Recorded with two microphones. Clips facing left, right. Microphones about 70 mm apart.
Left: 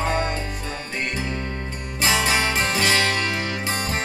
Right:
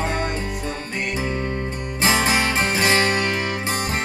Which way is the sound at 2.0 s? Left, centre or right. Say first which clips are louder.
Right 2 dB; right.